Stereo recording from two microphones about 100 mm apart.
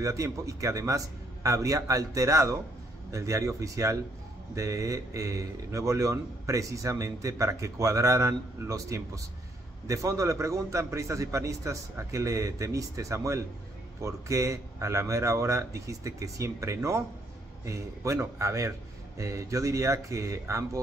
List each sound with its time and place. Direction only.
0.0 s speech: 35° right (ahead or behind)